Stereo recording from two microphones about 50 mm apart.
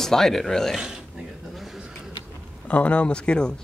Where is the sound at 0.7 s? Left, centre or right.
Centre.